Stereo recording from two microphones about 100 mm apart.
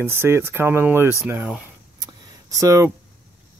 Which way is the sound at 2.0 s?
35° right (ahead or behind).